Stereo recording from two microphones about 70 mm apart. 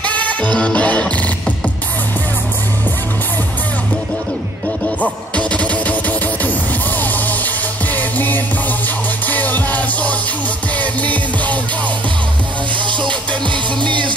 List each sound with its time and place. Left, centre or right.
0.0 s music: left
5.5 s music: centre